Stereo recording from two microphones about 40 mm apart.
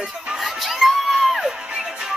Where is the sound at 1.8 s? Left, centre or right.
Centre.